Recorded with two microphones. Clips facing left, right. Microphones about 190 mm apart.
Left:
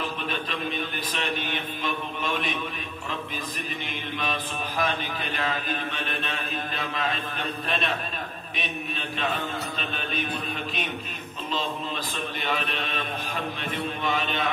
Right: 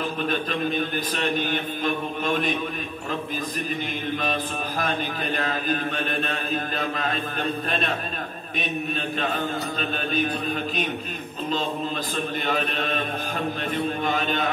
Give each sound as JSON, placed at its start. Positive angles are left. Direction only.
{"t": 0.3, "sound": "speech", "side_deg": -40}
{"t": 4.2, "sound": "a man's voice", "side_deg": -40}
{"t": 9.8, "sound": "a man's voice", "side_deg": -40}
{"t": 12.4, "sound": "a man's voice", "side_deg": -40}
{"t": 14.0, "sound": "speech", "side_deg": -45}